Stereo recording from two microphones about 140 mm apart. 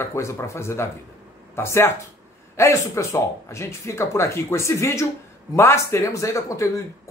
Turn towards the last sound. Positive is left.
turn(degrees=20)  # may be behind; listen again after turning